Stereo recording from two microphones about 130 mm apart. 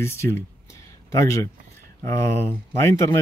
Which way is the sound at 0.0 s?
20° left (ahead or behind).